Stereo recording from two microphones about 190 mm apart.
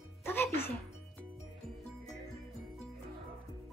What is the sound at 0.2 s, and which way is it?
Music, 15° left (ahead or behind).